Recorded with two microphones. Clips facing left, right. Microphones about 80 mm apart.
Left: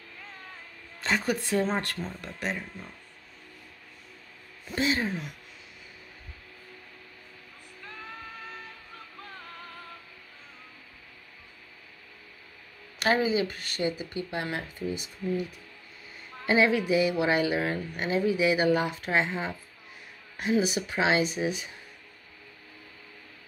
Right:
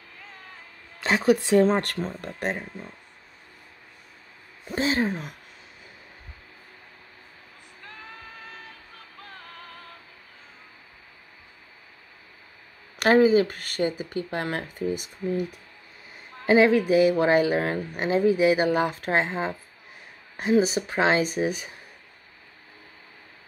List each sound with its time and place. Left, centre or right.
1.0 s speech: right
2.0 s speech: right
4.6 s speech: right
13.0 s speech: right
16.4 s speech: right